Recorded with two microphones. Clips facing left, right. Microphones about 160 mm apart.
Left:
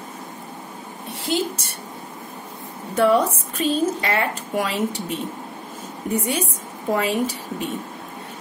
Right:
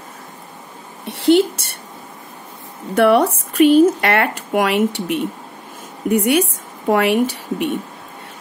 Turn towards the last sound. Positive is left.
turn(degrees=-70)  # may be behind; listen again after turning